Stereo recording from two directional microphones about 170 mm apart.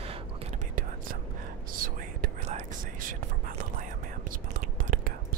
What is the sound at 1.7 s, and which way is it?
Whispering, 55° right (ahead or behind).